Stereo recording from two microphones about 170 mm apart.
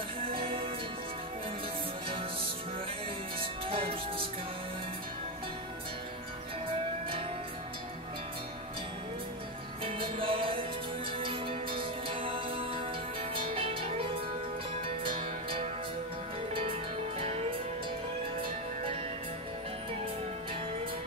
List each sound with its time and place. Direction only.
0.3 s music: 30° right (ahead or behind)
3.3 s music: 30° right (ahead or behind)
9.8 s music: 30° right (ahead or behind)
17.2 s music: 35° right (ahead or behind)